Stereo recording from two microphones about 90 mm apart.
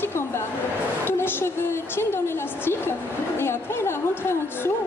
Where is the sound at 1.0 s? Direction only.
25° left (ahead or behind).